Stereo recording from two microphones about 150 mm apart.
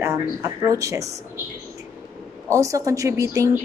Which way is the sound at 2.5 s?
20° right (ahead or behind).